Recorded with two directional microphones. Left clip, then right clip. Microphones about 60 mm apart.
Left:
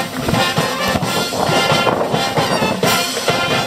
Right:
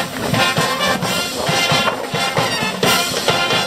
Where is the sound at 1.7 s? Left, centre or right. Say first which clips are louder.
Left 2 dB; centre.